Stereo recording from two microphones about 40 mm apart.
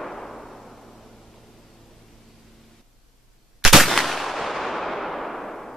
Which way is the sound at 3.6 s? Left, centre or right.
Centre.